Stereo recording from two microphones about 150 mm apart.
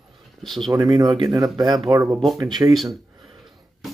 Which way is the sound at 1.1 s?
25° right (ahead or behind).